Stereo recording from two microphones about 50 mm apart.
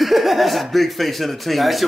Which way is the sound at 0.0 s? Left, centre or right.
Centre.